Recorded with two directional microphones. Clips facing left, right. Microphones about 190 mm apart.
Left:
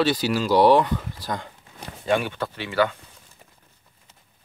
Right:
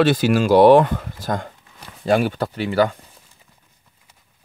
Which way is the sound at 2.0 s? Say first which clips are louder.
Right 5 dB; 40° right (ahead or behind).